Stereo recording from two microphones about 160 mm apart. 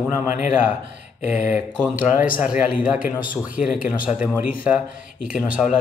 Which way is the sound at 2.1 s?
60° left (ahead or behind).